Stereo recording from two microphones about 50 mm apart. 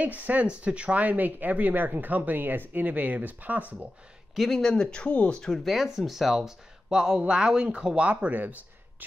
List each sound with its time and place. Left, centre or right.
0.0 s speech: right
4.4 s speech: centre
5.0 s speech: left
5.4 s speech: centre; by 8.5 s right